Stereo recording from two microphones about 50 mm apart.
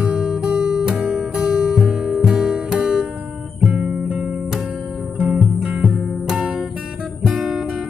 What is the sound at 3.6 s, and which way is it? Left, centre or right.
Guitar, centre.